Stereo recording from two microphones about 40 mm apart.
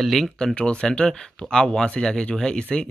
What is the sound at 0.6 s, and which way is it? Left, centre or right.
Speech, left.